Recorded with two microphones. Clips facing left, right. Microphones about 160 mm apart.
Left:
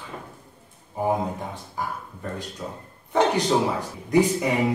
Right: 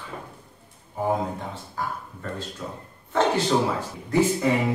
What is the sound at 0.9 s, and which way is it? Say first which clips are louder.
Speech: left 1 dB; 15° left (ahead or behind).